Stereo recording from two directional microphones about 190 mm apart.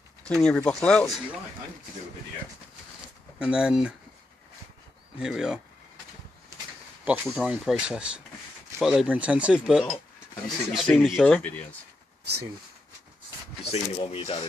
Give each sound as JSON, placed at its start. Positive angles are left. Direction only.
{"t": 0.2, "sound": "speech", "side_deg": 5}
{"t": 3.3, "sound": "speech", "side_deg": -5}
{"t": 5.2, "sound": "speech", "side_deg": -5}
{"t": 7.1, "sound": "speech", "side_deg": -5}
{"t": 13.7, "sound": "speech", "side_deg": 30}